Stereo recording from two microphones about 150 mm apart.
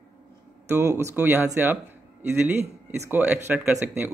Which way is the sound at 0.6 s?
15° right (ahead or behind).